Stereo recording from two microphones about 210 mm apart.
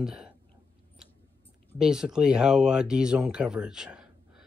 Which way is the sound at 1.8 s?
5° right (ahead or behind).